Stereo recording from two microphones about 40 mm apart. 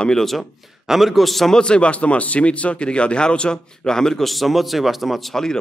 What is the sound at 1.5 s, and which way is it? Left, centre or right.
Speech, left.